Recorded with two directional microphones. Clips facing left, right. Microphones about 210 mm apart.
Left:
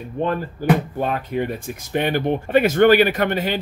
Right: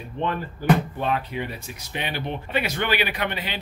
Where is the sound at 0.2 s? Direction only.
45° left (ahead or behind).